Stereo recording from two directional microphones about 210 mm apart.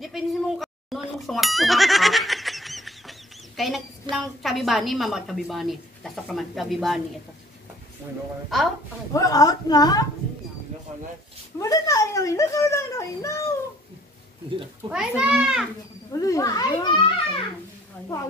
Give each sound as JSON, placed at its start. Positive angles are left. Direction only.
{"t": 0.0, "sound": "a sound", "side_deg": 0}
{"t": 4.1, "sound": "a woman's voice", "side_deg": 0}
{"t": 9.1, "sound": "a child's voice", "side_deg": 15}
{"t": 11.5, "sound": "a child's voice", "side_deg": 15}
{"t": 14.9, "sound": "a woman's voice", "side_deg": -5}
{"t": 16.1, "sound": "a child's voice", "side_deg": 15}